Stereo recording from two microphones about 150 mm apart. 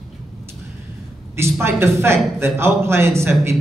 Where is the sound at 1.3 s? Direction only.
15° right (ahead or behind).